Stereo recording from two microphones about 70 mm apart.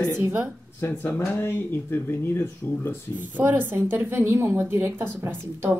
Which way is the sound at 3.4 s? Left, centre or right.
Right.